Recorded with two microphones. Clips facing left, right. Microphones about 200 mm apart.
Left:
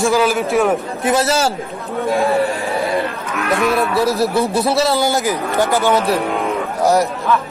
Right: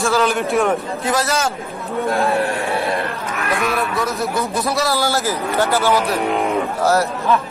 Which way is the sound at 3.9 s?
35° left (ahead or behind).